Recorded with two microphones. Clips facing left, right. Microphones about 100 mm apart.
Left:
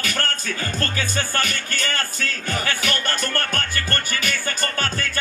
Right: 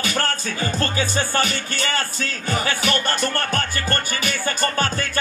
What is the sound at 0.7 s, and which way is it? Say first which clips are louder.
Music: right 4 dB; 20° right (ahead or behind).